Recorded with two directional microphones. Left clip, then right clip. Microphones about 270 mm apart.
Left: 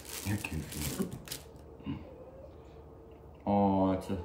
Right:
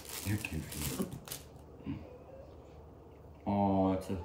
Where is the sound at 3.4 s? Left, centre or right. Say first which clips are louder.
Left 3 dB; centre.